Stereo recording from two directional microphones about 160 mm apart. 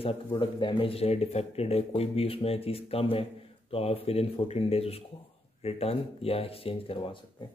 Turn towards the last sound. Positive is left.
turn(degrees=35)  # may be behind; listen again after turning